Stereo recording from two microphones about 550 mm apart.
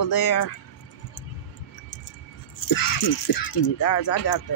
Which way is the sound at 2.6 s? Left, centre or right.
Left.